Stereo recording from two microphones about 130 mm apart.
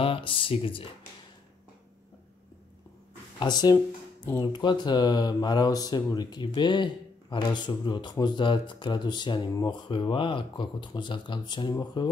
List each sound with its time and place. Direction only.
0.0 s speech: 45° left (ahead or behind)
3.3 s speech: 35° left (ahead or behind)